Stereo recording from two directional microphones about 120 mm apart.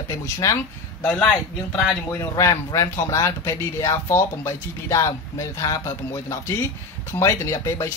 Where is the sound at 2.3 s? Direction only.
25° left (ahead or behind).